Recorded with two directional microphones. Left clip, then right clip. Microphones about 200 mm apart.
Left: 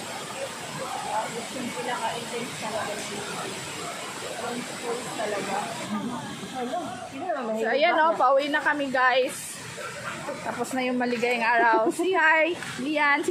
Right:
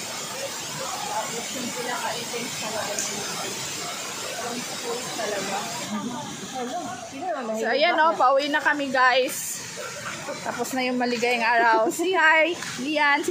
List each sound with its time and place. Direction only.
7.6 s a woman's voice: 15° right (ahead or behind)
10.8 s a woman's voice: 15° right (ahead or behind)